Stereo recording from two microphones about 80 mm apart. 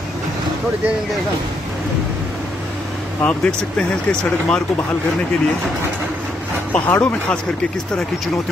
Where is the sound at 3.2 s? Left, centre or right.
Centre.